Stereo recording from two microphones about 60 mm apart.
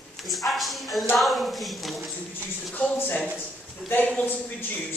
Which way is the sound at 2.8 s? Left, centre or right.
Centre.